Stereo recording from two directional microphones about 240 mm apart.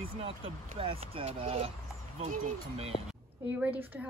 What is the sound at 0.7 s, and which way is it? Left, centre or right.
Speech, right.